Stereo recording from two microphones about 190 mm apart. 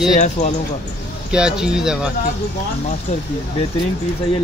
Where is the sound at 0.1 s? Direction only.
40° left (ahead or behind).